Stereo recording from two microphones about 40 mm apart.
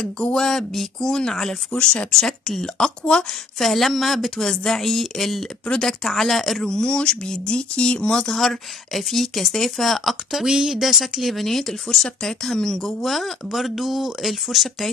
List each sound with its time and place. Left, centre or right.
0.0 s speech: centre
8.3 s speech: centre
10.4 s speech: centre